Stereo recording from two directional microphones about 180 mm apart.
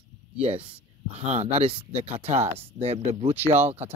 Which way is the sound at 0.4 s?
35° right (ahead or behind).